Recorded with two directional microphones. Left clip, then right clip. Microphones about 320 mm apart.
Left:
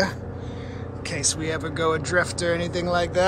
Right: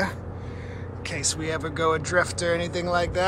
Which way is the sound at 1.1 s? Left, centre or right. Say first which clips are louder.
Left 2 dB; centre.